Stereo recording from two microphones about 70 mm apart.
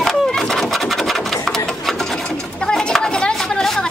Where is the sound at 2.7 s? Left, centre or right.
Centre.